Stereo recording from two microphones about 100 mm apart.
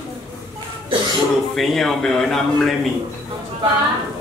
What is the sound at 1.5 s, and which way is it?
A man's voice, centre (ahead or behind).